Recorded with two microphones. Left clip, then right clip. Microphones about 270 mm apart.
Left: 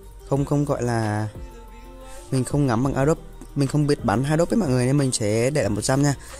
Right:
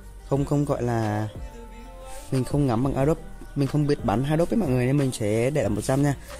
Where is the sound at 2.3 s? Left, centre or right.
Centre.